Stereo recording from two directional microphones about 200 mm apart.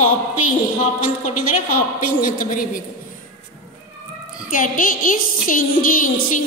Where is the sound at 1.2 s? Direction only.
45° left (ahead or behind).